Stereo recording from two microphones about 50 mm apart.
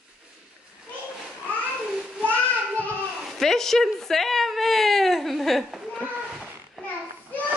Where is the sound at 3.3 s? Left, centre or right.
Centre.